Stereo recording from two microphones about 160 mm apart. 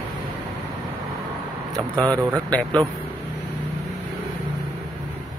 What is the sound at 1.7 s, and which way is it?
Speech, 25° right (ahead or behind).